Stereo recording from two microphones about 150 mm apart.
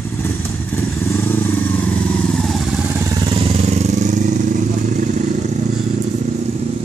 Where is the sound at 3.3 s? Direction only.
35° right (ahead or behind); by 5.6 s 55° right (ahead or behind).